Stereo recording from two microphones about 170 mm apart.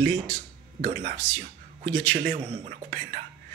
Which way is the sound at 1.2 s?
10° left (ahead or behind).